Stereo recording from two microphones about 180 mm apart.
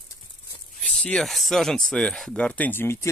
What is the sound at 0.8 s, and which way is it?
Speech, 5° left (ahead or behind).